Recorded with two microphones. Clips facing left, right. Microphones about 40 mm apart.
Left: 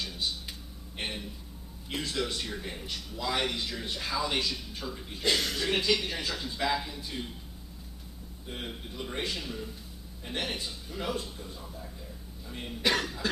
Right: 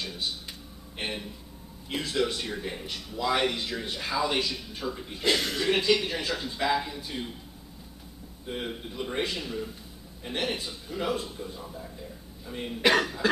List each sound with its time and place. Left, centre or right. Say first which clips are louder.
0.0 s a sound: right 1 dB; centre
1.9 s speech: right 4 dB; centre
8.5 s speech: right 5 dB; centre